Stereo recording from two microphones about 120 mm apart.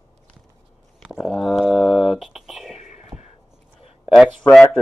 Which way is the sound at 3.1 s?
15° right (ahead or behind).